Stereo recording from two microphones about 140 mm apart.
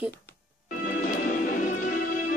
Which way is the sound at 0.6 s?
90° left.